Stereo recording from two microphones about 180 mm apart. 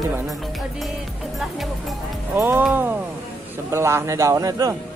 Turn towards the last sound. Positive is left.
turn(degrees=-20)  # may be behind; listen again after turning